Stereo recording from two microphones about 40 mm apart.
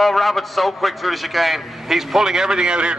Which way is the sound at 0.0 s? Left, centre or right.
Centre.